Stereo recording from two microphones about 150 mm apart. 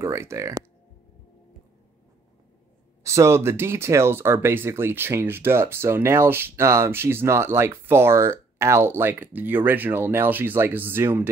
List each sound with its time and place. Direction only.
0.0 s speech: 20° right (ahead or behind)
3.0 s speech: 20° right (ahead or behind)